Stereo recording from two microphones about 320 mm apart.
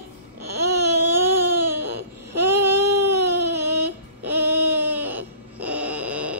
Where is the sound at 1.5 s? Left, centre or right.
Right.